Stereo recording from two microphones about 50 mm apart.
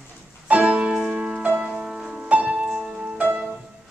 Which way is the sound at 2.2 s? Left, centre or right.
Right.